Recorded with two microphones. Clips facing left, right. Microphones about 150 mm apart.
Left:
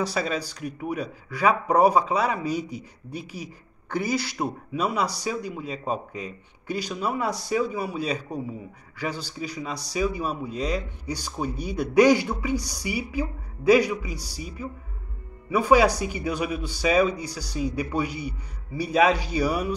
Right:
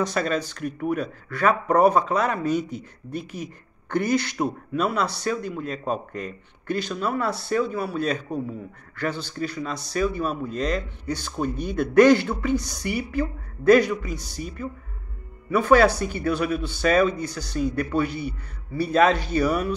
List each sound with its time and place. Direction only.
0.0 s a man's voice: 5° left (ahead or behind)
3.2 s speech: 50° right (ahead or behind)
3.9 s a man's voice: 5° left (ahead or behind)
15.5 s a man's voice: 10° left (ahead or behind)